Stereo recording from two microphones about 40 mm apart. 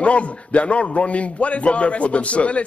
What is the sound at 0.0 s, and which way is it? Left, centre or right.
Speech, left.